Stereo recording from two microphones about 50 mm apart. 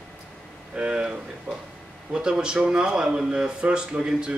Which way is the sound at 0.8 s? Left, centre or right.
Centre.